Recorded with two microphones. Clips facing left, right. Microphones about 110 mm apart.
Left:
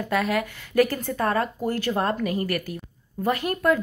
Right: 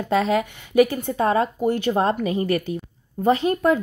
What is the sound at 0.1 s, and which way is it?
A woman's voice, 25° right (ahead or behind).